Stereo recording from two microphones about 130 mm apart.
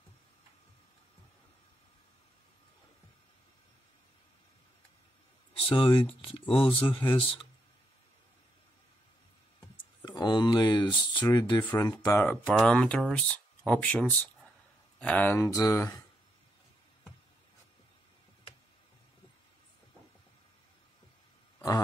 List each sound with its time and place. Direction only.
5.5 s speech: 40° left (ahead or behind)
10.0 s speech: 35° left (ahead or behind)
12.1 s speech: 20° left (ahead or behind)
12.4 s speech: 5° left (ahead or behind); by 16.0 s 20° left (ahead or behind)